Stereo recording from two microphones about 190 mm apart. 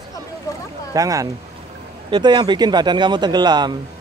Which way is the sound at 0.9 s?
20° right (ahead or behind).